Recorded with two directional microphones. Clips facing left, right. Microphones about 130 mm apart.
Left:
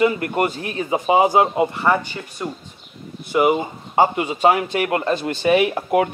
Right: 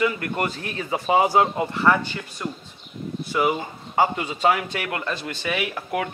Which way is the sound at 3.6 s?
25° left (ahead or behind).